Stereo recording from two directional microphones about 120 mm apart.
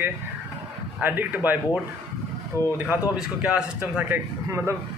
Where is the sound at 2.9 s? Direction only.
5° right (ahead or behind).